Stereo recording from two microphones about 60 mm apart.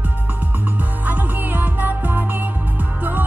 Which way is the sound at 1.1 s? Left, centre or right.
Right.